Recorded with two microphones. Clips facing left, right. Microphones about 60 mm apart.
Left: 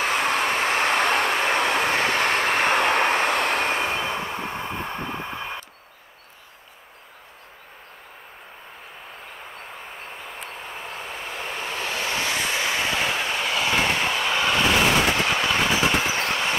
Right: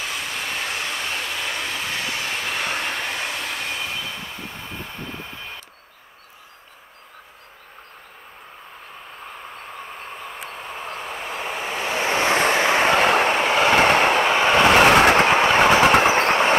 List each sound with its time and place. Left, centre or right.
0.0 s vehicle: left
10.1 s vehicle: centre
12.0 s vehicle: right
13.4 s vehicle: right
13.7 s vehicle: right
14.3 s vehicle: right
14.6 s vehicle: right
15.2 s train: right
15.6 s train: right
16.1 s train: right